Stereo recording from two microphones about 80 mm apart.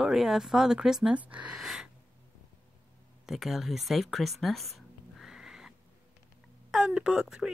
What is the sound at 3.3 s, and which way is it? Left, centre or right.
Speech, centre.